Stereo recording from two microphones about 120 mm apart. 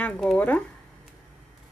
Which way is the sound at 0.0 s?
10° left (ahead or behind).